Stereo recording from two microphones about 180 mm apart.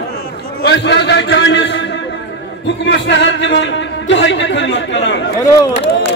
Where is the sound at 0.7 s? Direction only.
75° left (ahead or behind).